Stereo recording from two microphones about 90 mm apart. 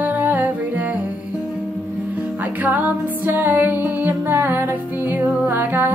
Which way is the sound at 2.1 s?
20° right (ahead or behind).